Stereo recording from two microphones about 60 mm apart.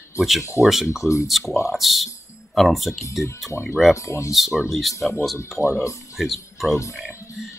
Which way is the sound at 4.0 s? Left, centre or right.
Left.